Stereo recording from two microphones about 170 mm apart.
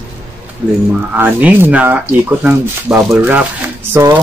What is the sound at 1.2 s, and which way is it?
Speech, 10° right (ahead or behind).